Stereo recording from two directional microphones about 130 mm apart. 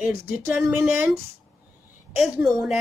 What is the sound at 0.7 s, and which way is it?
Speech, 15° right (ahead or behind).